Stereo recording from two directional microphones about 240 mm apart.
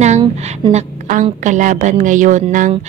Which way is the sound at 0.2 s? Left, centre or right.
Right.